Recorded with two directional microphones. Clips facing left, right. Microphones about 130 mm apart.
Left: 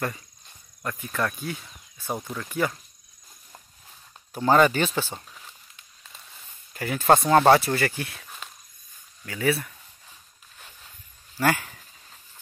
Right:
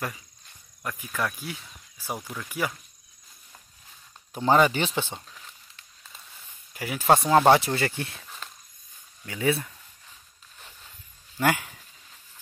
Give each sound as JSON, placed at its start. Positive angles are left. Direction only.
{"t": 0.8, "sound": "speech", "side_deg": -5}
{"t": 4.3, "sound": "speech", "side_deg": -15}
{"t": 6.7, "sound": "speech", "side_deg": -10}
{"t": 9.2, "sound": "speech", "side_deg": -20}
{"t": 11.3, "sound": "speech", "side_deg": -15}